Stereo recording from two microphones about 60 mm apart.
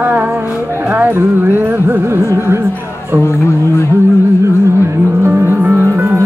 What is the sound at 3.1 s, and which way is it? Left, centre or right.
Music, right.